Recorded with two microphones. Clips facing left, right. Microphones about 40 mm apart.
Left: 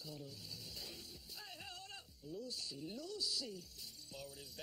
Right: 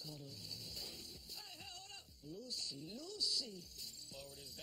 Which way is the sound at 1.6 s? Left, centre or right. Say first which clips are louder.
Left 3 dB; centre.